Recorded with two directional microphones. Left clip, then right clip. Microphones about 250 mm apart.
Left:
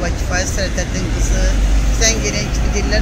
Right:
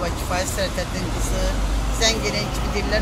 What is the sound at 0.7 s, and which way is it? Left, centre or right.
Speech, centre.